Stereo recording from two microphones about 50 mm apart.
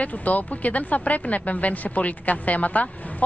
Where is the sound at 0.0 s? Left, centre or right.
Left.